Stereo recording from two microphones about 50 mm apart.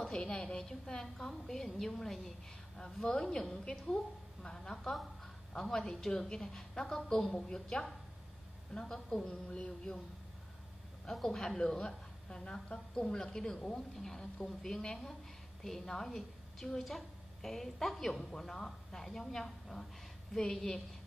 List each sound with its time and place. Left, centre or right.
0.2 s a woman's voice: centre
2.8 s a woman's voice: centre
11.1 s a woman's voice: centre